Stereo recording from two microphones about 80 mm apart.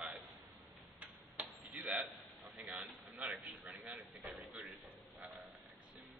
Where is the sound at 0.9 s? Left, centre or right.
Centre.